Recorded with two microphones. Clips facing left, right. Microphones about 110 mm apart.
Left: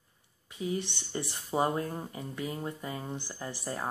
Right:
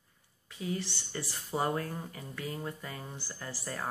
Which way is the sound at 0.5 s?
20° left (ahead or behind).